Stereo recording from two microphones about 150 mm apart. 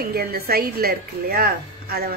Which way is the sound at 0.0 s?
85° right.